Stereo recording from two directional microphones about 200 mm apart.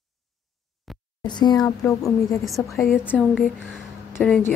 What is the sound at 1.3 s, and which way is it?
Speech, 20° left (ahead or behind).